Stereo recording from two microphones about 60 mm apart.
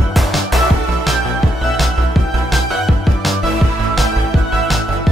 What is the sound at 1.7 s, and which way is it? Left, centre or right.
Music, centre.